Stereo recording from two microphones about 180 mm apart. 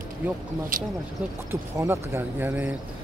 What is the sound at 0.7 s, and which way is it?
Speech, 50° right (ahead or behind).